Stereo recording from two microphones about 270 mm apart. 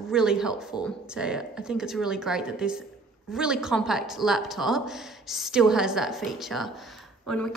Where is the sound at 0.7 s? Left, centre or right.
Centre.